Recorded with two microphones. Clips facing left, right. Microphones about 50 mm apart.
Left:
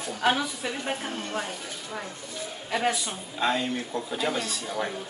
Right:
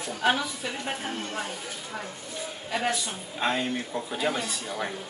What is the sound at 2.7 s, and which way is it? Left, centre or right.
Speech, centre.